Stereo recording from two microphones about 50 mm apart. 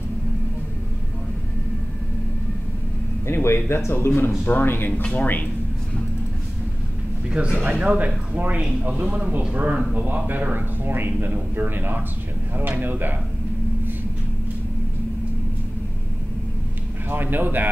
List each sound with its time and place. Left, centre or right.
3.4 s speech: left
5.0 s speech: left
7.3 s speech: centre
7.8 s a man's voice: right
17.1 s a man's voice: right